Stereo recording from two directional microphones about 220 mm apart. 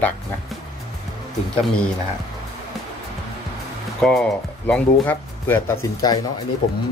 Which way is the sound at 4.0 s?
Centre (ahead or behind).